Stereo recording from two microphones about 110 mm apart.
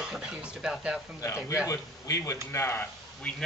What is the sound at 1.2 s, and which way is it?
Speech, 30° left (ahead or behind).